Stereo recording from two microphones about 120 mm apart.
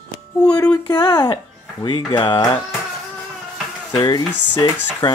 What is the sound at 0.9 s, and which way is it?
Speech, 35° left (ahead or behind).